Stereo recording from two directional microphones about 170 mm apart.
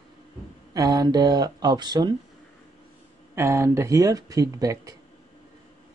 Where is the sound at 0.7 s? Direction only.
20° right (ahead or behind).